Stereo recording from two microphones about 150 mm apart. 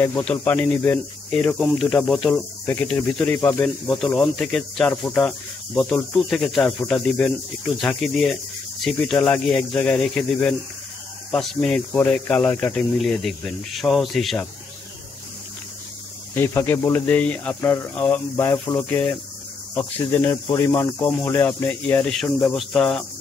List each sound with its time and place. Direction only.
0.2 s speech: 10° left (ahead or behind)
3.6 s speech: centre (ahead or behind)
16.3 s speech: 15° left (ahead or behind)